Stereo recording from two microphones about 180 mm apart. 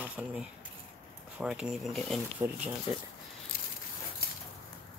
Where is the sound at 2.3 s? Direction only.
10° right (ahead or behind).